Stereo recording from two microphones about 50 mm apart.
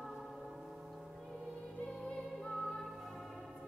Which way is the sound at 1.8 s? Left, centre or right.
Centre.